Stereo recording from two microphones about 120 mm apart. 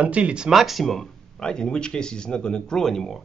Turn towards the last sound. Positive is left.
turn(degrees=5)  # may be behind; listen again after turning